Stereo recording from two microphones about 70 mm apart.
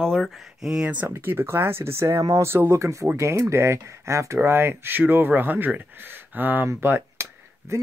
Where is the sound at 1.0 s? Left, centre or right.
Right.